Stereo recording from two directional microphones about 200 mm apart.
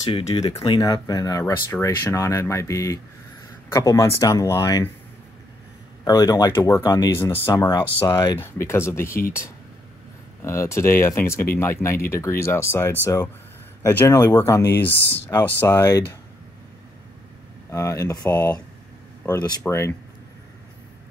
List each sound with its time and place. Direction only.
0.0 s speech: 20° left (ahead or behind)
6.0 s speech: 20° left (ahead or behind)
14.0 s speech: 15° left (ahead or behind)
17.6 s speech: 15° left (ahead or behind)